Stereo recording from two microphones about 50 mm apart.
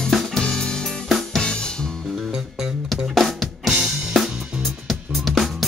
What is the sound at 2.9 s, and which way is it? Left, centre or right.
Music, centre.